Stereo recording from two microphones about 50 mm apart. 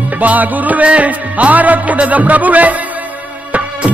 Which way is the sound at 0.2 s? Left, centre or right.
Right.